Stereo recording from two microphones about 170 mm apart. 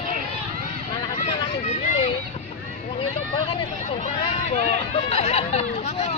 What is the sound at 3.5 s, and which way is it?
Speech, 40° left (ahead or behind).